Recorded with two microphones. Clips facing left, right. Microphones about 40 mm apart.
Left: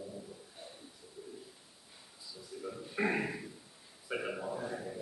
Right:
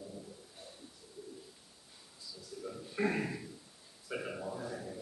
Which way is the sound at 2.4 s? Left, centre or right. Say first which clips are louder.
Left 1 dB; centre.